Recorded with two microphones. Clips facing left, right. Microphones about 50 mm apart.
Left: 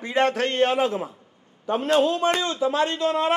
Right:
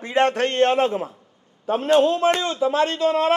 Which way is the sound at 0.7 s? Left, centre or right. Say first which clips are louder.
Right 2 dB; centre.